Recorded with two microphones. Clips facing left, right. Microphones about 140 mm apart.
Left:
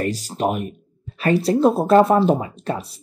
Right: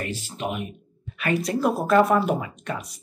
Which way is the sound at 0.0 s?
40° left (ahead or behind).